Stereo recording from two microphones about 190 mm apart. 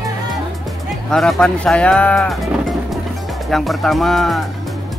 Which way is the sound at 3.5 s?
Centre (ahead or behind).